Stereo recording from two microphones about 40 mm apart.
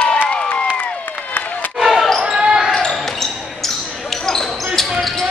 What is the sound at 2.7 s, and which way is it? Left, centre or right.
Basketball bounce, centre.